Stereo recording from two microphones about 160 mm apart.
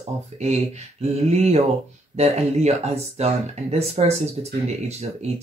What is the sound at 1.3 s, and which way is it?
Speech, 40° right (ahead or behind).